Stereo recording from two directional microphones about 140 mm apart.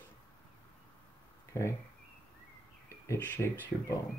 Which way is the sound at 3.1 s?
15° left (ahead or behind).